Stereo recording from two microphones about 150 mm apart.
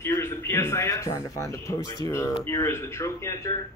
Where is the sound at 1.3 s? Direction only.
20° left (ahead or behind).